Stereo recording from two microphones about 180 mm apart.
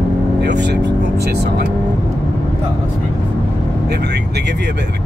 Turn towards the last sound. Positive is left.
turn(degrees=-70)  # may be behind; listen again after turning